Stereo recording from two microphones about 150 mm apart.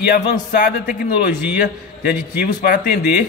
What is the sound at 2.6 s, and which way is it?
Speech, 90° left.